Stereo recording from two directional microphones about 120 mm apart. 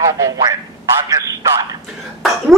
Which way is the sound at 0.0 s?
30° right (ahead or behind).